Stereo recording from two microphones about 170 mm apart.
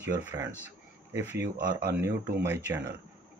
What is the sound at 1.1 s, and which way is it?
Speech, 10° right (ahead or behind).